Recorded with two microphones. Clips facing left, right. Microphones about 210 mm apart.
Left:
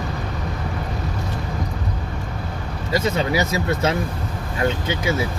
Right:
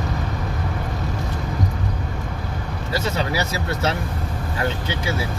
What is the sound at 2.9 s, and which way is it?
Speech, 20° left (ahead or behind).